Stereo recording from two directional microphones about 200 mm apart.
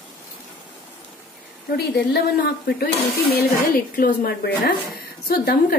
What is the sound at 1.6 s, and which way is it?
Speech, 55° left (ahead or behind).